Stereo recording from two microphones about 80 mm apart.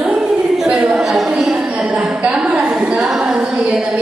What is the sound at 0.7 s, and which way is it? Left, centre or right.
Speech, centre.